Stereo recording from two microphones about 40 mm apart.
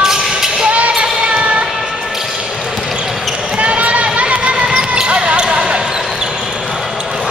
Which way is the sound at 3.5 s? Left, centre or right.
Right.